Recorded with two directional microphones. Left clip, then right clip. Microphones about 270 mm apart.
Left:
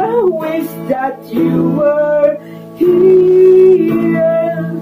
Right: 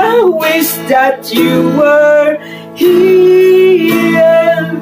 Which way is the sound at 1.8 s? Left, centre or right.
Centre.